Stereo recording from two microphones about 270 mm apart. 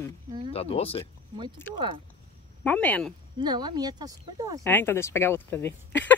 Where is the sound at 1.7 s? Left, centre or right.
Centre.